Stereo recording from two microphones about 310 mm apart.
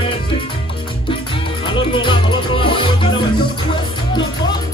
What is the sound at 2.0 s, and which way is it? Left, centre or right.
Music, centre.